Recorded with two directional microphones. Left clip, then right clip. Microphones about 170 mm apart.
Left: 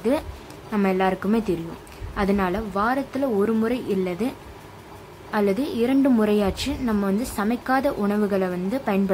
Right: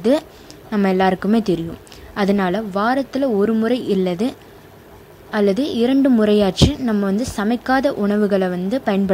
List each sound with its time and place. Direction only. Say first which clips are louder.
0.7 s a woman's voice: right 5 dB; 30° right (ahead or behind)